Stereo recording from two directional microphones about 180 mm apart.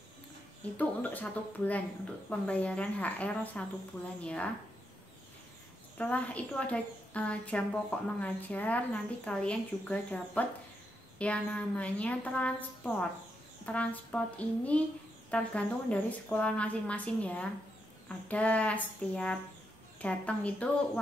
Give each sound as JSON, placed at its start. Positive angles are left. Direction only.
{"t": 0.7, "sound": "a woman's voice", "side_deg": 10}
{"t": 5.9, "sound": "a woman's voice", "side_deg": 10}